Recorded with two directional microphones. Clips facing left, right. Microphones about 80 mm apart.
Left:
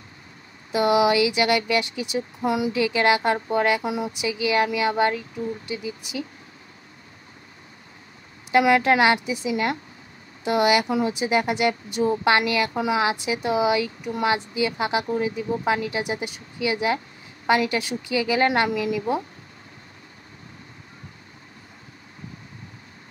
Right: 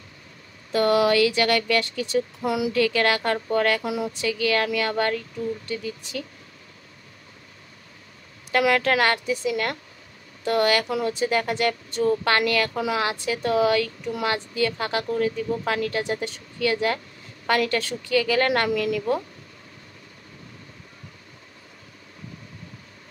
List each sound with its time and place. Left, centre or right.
0.7 s speech: centre
3.8 s speech: centre
8.5 s speech: centre